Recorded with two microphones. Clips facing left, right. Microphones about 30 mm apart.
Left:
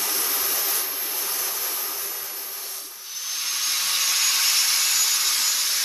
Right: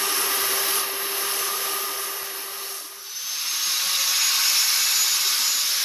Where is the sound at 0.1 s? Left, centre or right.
Right.